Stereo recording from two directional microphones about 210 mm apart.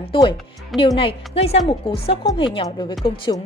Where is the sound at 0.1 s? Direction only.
20° left (ahead or behind).